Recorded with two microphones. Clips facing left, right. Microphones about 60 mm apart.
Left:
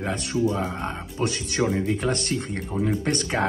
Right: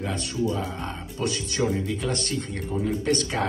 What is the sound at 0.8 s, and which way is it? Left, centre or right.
Speech, left.